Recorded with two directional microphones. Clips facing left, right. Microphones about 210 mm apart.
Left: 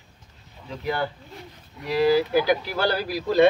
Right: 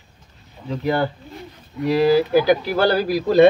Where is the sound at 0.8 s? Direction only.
60° right (ahead or behind).